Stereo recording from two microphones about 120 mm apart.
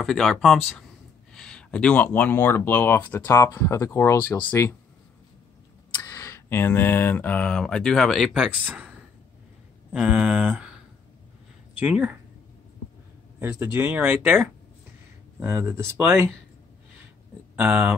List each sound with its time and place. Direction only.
0.0 s speech: centre (ahead or behind)
6.0 s speech: 25° left (ahead or behind); by 8.9 s 10° right (ahead or behind)
9.9 s speech: 10° right (ahead or behind)
11.8 s speech: 10° right (ahead or behind)
13.4 s speech: 20° right (ahead or behind)
15.4 s speech: 20° right (ahead or behind)
17.6 s speech: 10° right (ahead or behind)